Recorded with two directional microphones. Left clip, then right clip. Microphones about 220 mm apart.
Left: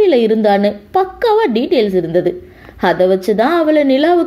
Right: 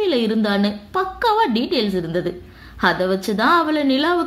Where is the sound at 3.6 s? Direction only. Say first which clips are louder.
Left 8 dB; 55° right (ahead or behind).